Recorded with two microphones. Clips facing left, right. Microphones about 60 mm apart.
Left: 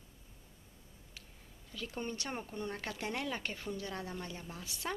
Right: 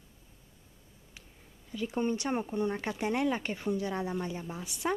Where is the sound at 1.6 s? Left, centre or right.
Centre.